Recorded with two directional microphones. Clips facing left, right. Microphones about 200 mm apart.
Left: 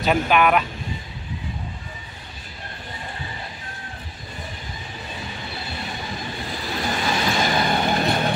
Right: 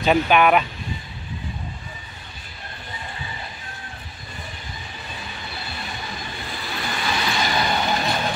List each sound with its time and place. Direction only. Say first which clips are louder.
0.0 s speech: right 2 dB; centre (ahead or behind)
6.8 s vehicle: left 3 dB; 40° left (ahead or behind)